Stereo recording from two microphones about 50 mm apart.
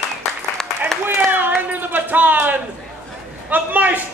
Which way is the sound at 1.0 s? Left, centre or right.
Right.